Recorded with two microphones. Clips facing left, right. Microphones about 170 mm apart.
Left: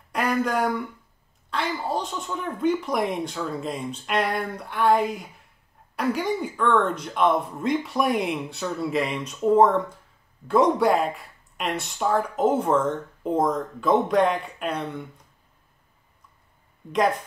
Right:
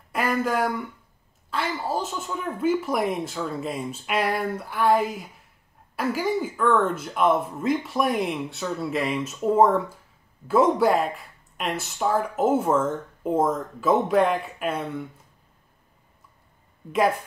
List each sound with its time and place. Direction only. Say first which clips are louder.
0.1 s speech: even; centre (ahead or behind)
16.9 s speech: even; 5° right (ahead or behind)